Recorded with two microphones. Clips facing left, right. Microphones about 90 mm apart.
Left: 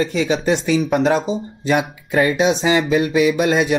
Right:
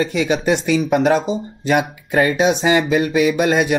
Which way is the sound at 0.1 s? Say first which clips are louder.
Even; 60° right (ahead or behind).